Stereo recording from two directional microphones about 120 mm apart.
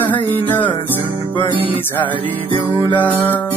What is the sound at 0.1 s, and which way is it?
Music, 15° left (ahead or behind).